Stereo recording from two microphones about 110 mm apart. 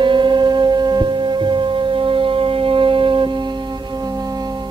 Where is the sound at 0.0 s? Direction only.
45° right (ahead or behind).